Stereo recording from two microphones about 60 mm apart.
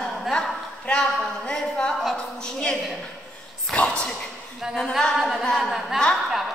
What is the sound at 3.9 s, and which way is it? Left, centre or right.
Speech, centre.